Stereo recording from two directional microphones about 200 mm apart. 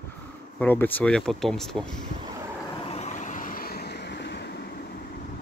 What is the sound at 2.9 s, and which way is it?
Vehicle, 35° left (ahead or behind).